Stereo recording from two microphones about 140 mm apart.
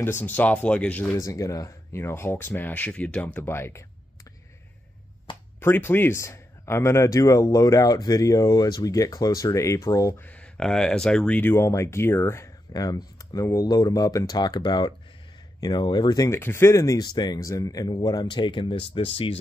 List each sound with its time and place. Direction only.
0.0 s speech: 15° left (ahead or behind)
1.2 s speech: 25° left (ahead or behind)
5.6 s speech: 15° left (ahead or behind)
10.2 s speech: 10° left (ahead or behind); by 16.3 s 30° left (ahead or behind)
16.3 s speech: 15° left (ahead or behind); by 19.3 s 40° left (ahead or behind)